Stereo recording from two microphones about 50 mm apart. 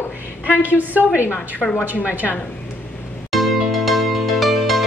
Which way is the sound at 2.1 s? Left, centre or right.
Right.